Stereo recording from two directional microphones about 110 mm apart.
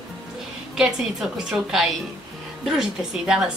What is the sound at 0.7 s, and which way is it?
A woman's voice, 5° right (ahead or behind).